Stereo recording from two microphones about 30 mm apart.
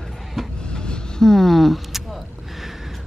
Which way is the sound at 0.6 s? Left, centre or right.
Left.